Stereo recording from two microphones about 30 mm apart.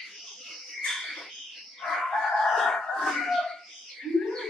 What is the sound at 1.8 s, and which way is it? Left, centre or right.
Fowl, centre.